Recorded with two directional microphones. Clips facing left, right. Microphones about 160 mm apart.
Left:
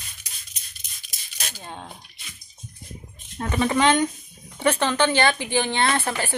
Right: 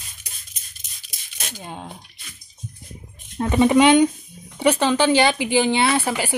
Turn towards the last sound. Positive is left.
turn(degrees=-10)  # may be behind; listen again after turning